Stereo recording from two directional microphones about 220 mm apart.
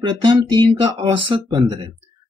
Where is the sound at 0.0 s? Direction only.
20° right (ahead or behind).